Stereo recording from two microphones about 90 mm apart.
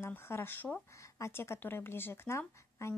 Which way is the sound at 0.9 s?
35° left (ahead or behind).